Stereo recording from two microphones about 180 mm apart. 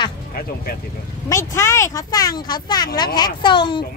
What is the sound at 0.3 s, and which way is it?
Speech, 55° left (ahead or behind).